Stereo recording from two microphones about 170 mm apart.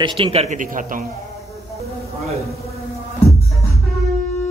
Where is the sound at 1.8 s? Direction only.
40° right (ahead or behind).